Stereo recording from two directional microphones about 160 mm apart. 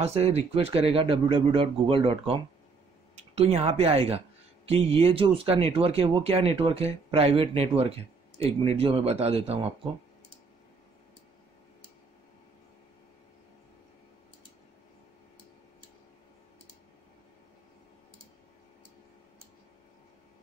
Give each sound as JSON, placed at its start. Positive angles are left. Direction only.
{"t": 0.0, "sound": "speech", "side_deg": -40}